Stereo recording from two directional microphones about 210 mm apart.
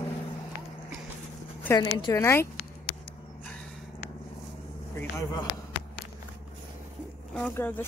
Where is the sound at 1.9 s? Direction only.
20° left (ahead or behind).